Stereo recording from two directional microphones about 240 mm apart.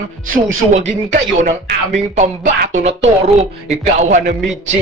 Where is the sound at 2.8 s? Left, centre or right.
Right.